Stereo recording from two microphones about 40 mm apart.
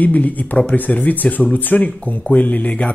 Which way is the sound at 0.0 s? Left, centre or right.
Left.